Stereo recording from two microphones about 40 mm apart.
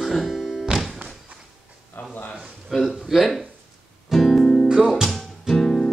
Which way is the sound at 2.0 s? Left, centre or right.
Left.